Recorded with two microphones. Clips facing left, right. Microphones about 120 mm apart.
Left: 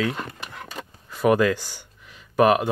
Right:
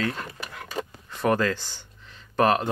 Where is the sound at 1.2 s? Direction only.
10° left (ahead or behind).